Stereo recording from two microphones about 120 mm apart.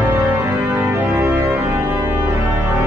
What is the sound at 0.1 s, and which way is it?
Organ, 20° right (ahead or behind).